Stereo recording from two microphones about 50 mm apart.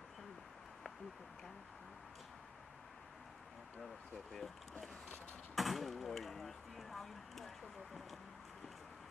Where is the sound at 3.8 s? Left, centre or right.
Centre.